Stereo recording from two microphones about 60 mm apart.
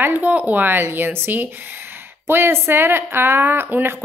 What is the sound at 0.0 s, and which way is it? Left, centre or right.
Speech, right.